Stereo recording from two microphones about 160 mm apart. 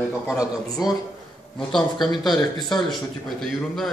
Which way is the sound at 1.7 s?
Centre (ahead or behind).